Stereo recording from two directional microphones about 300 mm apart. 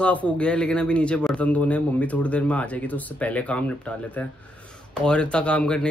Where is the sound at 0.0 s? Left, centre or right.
Centre.